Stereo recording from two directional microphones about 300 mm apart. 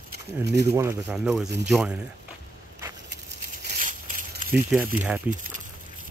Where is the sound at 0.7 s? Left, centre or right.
Centre.